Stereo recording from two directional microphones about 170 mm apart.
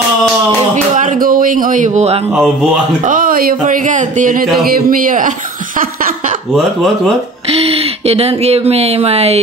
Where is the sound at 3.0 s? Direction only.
55° right (ahead or behind).